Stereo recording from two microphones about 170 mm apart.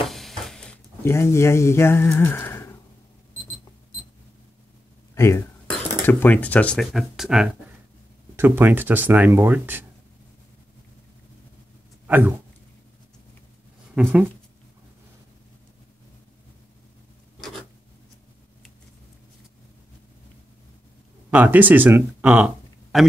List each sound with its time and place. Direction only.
0.1 s a sound: centre (ahead or behind)
5.1 s a sound: 15° left (ahead or behind)
6.0 s speech: 10° left (ahead or behind); by 9.8 s 10° right (ahead or behind)
12.1 s speech: 10° right (ahead or behind)
13.9 s speech: 5° right (ahead or behind)
21.3 s speech: 10° right (ahead or behind)